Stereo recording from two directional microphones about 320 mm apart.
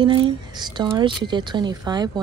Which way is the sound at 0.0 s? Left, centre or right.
Centre.